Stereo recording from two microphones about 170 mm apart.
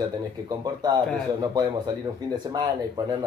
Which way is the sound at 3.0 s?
20° right (ahead or behind).